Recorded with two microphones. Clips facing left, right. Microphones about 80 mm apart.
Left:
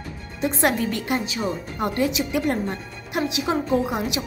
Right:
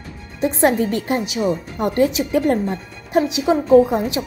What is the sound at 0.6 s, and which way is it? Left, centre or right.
A woman's voice, right.